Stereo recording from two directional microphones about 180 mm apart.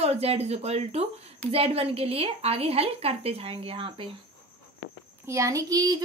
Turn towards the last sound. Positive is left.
turn(degrees=-20)  # may be behind; listen again after turning